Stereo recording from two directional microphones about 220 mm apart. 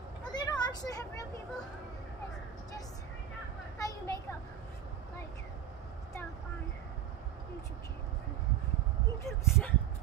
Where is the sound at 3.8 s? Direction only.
15° left (ahead or behind).